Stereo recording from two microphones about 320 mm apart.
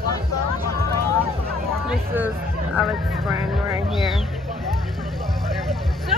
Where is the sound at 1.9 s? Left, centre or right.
Centre.